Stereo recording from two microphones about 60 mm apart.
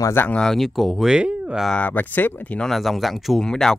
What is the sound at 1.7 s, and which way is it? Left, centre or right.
Speech, left.